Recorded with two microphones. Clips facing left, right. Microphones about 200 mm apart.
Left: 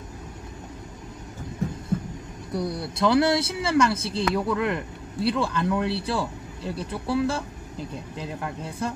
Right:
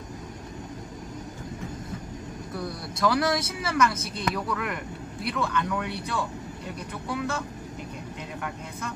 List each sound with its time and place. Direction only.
2.5 s speech: 25° left (ahead or behind)